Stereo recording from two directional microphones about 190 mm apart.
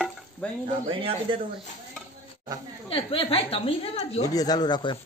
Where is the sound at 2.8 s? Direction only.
30° left (ahead or behind).